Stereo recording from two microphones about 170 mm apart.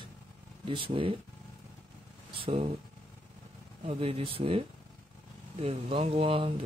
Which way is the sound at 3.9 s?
35° right (ahead or behind).